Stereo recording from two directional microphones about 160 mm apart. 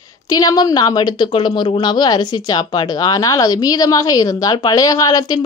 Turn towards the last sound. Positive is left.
turn(degrees=25)  # may be behind; listen again after turning